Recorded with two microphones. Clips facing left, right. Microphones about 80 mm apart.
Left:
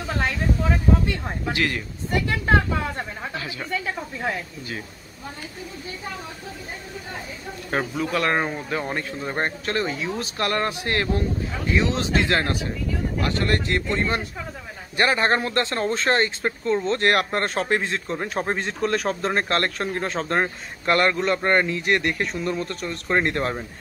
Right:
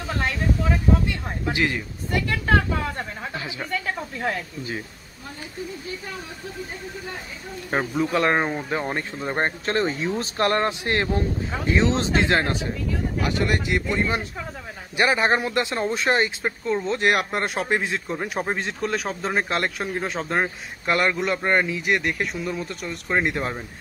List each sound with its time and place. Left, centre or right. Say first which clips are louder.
1.5 s speech: right 1 dB; centre
2.0 s speech: left 1 dB; left
3.3 s speech: right 1 dB; right
3.7 s speech: even; centre
7.7 s speech: right 2 dB; centre
13.2 s speech: even; centre